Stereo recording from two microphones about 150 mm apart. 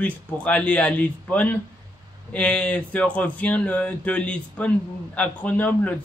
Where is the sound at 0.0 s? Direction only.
10° left (ahead or behind).